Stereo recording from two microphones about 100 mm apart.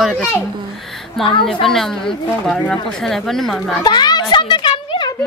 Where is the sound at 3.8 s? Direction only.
45° left (ahead or behind).